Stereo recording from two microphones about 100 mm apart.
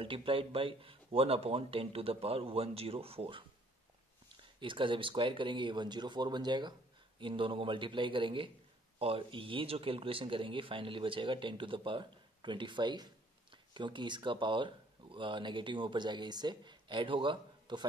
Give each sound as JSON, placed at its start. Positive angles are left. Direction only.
{"t": 0.0, "sound": "speech", "side_deg": -60}
{"t": 4.6, "sound": "speech", "side_deg": -55}
{"t": 7.2, "sound": "a man's voice", "side_deg": -60}
{"t": 9.0, "sound": "a man's voice", "side_deg": -65}